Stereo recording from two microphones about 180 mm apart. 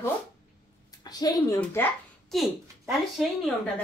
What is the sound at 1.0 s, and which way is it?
Speech, 20° left (ahead or behind).